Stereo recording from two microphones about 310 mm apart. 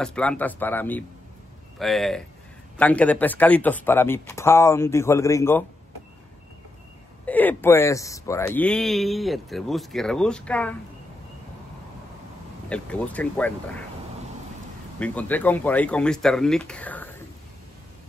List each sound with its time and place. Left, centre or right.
0.0 s speech: centre
7.2 s speech: centre
12.6 s speech: centre
15.0 s speech: centre